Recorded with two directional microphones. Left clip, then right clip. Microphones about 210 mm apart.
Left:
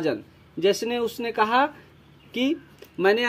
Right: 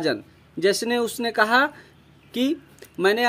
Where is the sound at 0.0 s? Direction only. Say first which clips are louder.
Right 2 dB; 25° right (ahead or behind).